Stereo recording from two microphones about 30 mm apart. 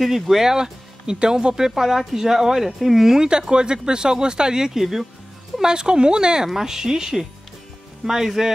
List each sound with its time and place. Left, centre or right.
0.0 s a woman's voice: centre
0.5 s speech: right
1.8 s a woman's voice: centre
3.3 s speech: right
8.4 s a woman's voice: centre